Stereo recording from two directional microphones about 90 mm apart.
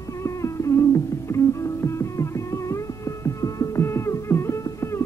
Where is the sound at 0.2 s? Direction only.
35° left (ahead or behind).